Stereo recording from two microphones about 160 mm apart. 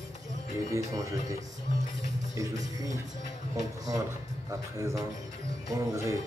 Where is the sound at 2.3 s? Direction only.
20° right (ahead or behind).